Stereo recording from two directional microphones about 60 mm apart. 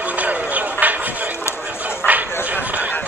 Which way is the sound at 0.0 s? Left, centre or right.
Right.